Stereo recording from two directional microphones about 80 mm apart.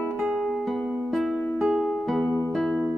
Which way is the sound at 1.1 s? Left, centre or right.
Centre.